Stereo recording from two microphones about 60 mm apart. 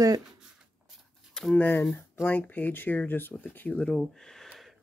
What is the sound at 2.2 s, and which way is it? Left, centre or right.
Speech, left.